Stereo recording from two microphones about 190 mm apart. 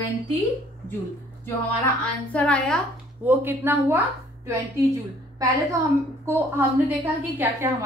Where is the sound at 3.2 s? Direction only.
10° right (ahead or behind).